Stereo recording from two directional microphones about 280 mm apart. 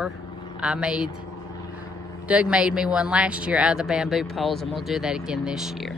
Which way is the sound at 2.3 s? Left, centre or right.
Centre.